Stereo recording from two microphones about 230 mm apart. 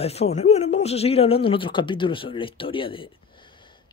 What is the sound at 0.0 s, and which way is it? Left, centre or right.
Speech, left.